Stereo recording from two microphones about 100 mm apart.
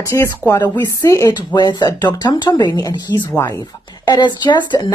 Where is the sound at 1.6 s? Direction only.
45° left (ahead or behind).